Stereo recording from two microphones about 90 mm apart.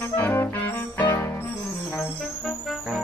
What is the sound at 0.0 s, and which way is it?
Music, 25° left (ahead or behind).